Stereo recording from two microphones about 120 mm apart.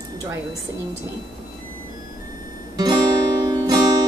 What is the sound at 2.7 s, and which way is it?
Guitar, 35° right (ahead or behind).